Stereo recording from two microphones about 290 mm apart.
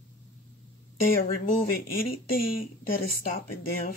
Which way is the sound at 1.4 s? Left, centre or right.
Left.